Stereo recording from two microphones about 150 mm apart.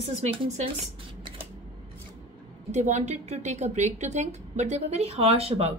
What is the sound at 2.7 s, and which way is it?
A woman's voice, 50° right (ahead or behind).